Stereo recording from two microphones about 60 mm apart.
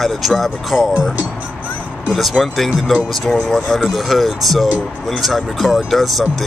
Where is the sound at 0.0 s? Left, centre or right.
Centre.